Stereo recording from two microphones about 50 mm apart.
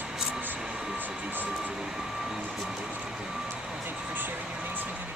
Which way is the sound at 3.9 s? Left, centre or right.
Right.